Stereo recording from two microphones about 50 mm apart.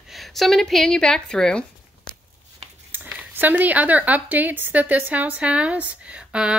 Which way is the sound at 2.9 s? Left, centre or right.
Right.